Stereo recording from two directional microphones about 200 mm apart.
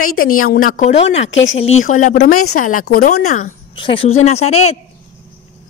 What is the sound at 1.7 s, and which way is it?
Speech, 85° left.